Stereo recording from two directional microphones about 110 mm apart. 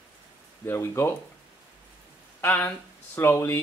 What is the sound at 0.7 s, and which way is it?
Speech, 25° left (ahead or behind).